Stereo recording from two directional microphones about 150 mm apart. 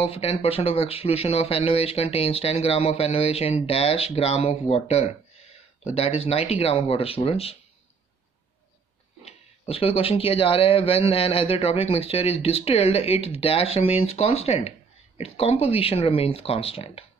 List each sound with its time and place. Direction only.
0.0 s speech: 40° left (ahead or behind)
9.2 s speech: 40° left (ahead or behind)